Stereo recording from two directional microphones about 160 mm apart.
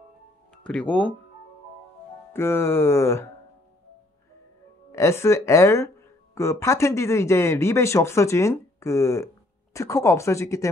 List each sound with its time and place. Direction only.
0.7 s speech: 10° left (ahead or behind)
2.3 s speech: 15° left (ahead or behind)
4.9 s speech: 15° left (ahead or behind)